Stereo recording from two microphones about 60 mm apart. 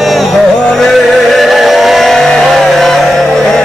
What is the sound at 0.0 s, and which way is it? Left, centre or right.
Music, centre.